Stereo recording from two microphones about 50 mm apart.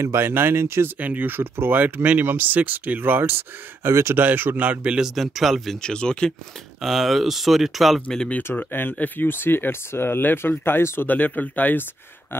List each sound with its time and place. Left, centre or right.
0.0 s speech: right
0.9 s speech: right
1.3 s speech: right
4.2 s speech: right
4.6 s a man's voice: right
5.0 s speech: centre
5.8 s speech: centre
6.8 s speech: centre
8.9 s speech: left
9.3 s speech: left
11.1 s speech: left